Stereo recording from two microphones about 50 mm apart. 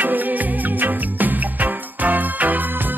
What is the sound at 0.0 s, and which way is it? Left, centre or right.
Music, right.